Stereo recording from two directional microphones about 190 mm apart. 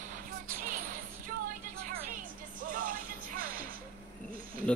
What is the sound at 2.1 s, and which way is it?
Music, 45° right (ahead or behind).